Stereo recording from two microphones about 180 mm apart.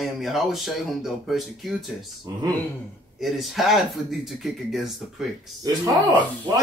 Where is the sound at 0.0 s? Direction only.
Centre (ahead or behind).